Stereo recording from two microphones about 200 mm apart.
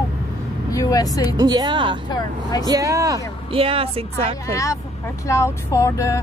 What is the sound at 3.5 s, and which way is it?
Speech, 25° right (ahead or behind).